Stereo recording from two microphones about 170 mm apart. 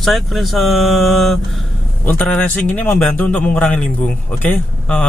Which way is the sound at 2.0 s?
10° left (ahead or behind).